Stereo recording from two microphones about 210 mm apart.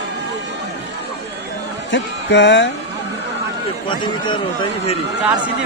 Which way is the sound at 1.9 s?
55° left (ahead or behind).